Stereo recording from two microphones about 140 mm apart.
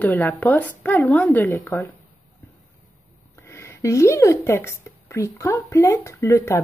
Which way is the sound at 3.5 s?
20° left (ahead or behind).